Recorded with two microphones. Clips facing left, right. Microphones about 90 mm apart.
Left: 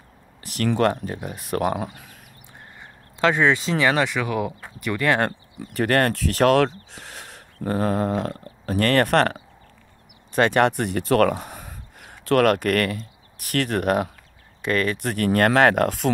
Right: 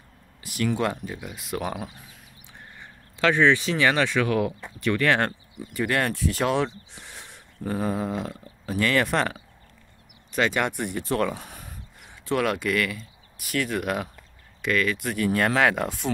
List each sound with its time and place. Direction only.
0.6 s speech: 55° left (ahead or behind)
3.2 s speech: 25° left (ahead or behind)
5.6 s speech: 70° left (ahead or behind)
5.9 s speech: 45° left (ahead or behind)
6.1 s speech: 65° left (ahead or behind)
10.3 s speech: 50° left (ahead or behind)
10.8 s speech: 80° left
12.0 s speech: 65° left (ahead or behind); by 15.2 s 45° left (ahead or behind)
15.2 s speech: 55° left (ahead or behind); by 16.1 s 75° left (ahead or behind)